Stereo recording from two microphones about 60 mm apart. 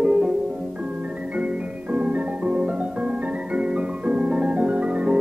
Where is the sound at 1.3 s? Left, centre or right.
Centre.